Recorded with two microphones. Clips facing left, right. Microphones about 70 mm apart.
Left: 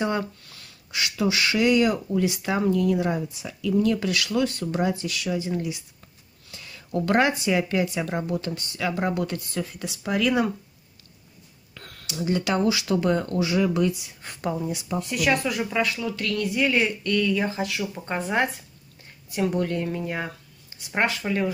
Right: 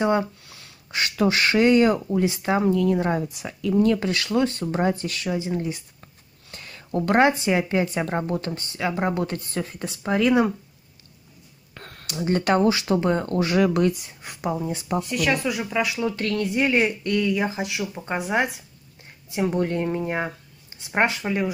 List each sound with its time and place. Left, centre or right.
0.0 s speech: right
0.9 s speech: right
3.2 s speech: right
6.5 s a sound: right
7.0 s speech: right
11.7 s a sound: right
12.1 s speech: right
13.4 s speech: right
14.2 s speech: centre
15.0 s speech: centre
16.0 s speech: right; by 18.6 s centre
19.2 s speech: right